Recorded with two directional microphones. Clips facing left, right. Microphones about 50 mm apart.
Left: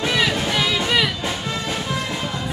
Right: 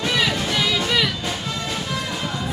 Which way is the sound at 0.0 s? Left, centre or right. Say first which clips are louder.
Left 1 dB; centre.